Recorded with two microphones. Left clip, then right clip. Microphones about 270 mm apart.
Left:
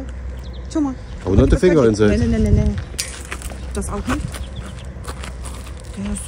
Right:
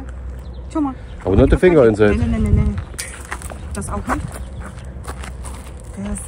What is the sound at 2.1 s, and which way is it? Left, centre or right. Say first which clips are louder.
Speech: left 3 dB; right.